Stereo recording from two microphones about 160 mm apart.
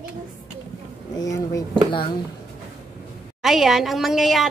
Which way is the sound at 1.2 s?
20° left (ahead or behind).